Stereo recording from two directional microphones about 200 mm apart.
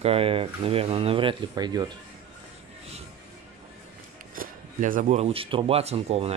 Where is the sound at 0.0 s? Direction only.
30° right (ahead or behind).